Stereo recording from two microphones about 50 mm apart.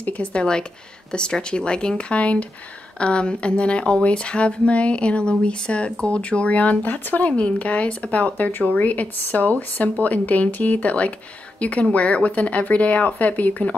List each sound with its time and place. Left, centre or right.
0.0 s speech: left
7.3 s speech: left